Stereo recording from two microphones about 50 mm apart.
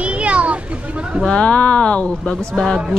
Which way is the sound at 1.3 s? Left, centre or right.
Left.